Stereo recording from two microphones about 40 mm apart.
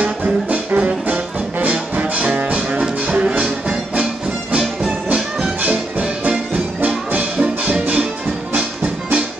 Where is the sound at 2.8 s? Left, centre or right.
Right.